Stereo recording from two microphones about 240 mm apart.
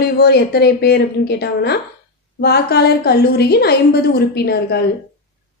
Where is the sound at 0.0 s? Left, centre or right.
Left.